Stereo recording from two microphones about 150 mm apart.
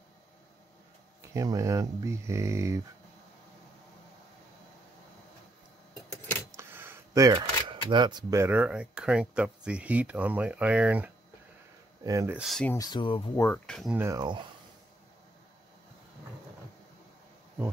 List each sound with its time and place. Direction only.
1.2 s speech: 20° right (ahead or behind)
6.5 s a sound: 15° right (ahead or behind)
7.2 s speech: 30° right (ahead or behind); by 11.1 s 10° right (ahead or behind)
12.0 s speech: 20° right (ahead or behind)
12.4 s speech: centre (ahead or behind)
12.7 s speech: 25° left (ahead or behind)
13.4 s speech: 10° left (ahead or behind)
13.9 s speech: 20° right (ahead or behind)